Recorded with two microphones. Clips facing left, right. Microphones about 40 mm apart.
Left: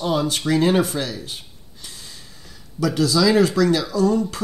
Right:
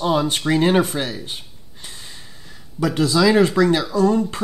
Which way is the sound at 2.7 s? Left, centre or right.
Right.